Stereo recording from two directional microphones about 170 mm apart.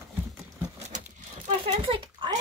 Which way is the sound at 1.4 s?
35° right (ahead or behind).